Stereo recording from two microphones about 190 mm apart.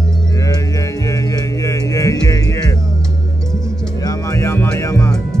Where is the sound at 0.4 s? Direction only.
20° left (ahead or behind).